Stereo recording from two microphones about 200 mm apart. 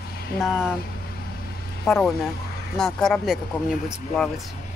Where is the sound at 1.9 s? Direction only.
Centre (ahead or behind).